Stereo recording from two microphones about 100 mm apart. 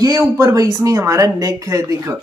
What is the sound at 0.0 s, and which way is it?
Speech, 35° right (ahead or behind).